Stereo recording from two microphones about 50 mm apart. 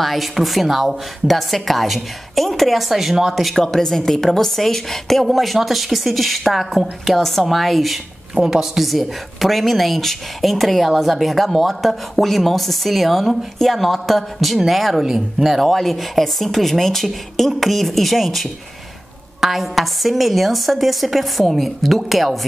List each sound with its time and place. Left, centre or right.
0.0 s a woman's voice: centre
3.5 s a woman's voice: centre
8.4 s a woman's voice: centre